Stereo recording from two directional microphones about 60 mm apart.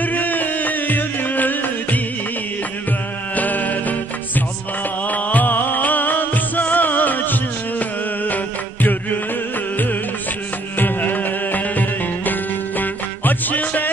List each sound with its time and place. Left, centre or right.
0.0 s music: left
3.3 s music: left
5.1 s music: left
10.8 s music: left